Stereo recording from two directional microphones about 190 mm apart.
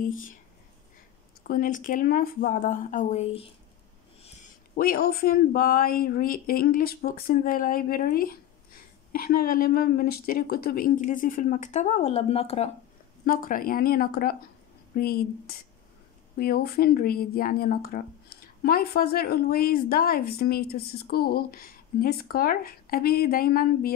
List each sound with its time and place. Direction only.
0.0 s speech: 45° left (ahead or behind)
1.5 s speech: 45° left (ahead or behind)
4.7 s speech: 50° left (ahead or behind); by 12.7 s 35° left (ahead or behind)
13.2 s speech: 45° left (ahead or behind)